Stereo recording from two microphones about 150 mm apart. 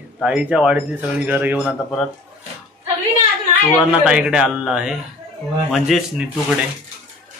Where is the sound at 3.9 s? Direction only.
5° right (ahead or behind).